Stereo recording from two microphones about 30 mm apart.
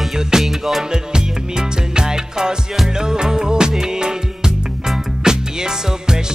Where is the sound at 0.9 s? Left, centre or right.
Right.